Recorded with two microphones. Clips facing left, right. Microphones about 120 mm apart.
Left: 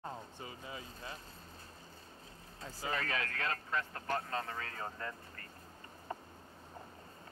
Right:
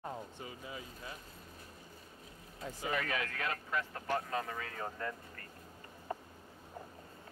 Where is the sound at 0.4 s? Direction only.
30° left (ahead or behind).